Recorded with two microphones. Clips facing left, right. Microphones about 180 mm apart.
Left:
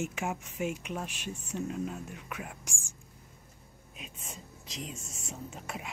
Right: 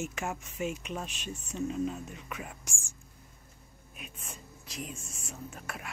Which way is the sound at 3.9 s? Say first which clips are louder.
Left 1 dB; 25° left (ahead or behind).